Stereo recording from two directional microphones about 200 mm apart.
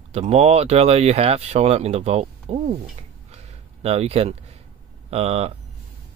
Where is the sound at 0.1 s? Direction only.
30° right (ahead or behind).